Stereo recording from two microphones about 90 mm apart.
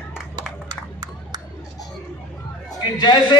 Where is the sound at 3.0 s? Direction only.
55° left (ahead or behind).